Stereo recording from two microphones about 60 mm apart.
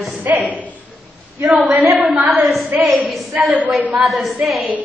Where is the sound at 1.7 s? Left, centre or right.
Right.